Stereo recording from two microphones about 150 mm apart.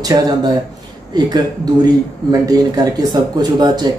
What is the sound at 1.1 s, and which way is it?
Speech, 25° right (ahead or behind).